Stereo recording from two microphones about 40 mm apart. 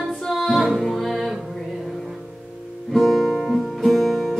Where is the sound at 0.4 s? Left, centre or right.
Centre.